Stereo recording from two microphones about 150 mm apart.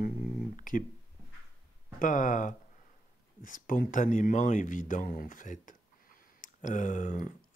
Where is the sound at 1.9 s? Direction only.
60° left (ahead or behind).